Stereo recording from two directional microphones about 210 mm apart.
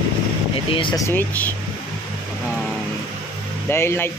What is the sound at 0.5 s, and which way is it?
Speech, 25° left (ahead or behind).